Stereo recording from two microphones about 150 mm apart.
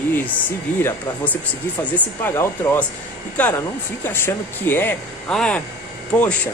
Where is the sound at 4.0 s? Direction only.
15° left (ahead or behind).